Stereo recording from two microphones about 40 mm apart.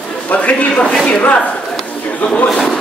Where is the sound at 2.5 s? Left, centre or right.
Centre.